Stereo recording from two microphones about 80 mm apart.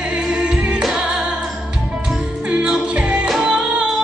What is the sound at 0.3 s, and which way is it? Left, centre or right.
Music, centre.